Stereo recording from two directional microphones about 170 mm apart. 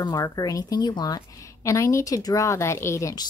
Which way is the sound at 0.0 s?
25° left (ahead or behind).